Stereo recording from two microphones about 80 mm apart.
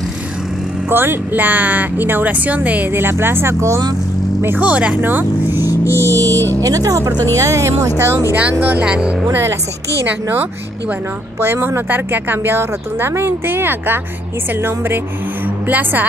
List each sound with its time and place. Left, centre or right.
0.8 s speech: right
4.6 s speech: centre
5.9 s a sound: right
6.6 s speech: right
8.4 s speech: centre
9.3 s speech: right
15.4 s music: right